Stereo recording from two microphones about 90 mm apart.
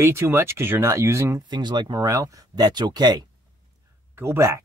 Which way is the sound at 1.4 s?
55° right (ahead or behind).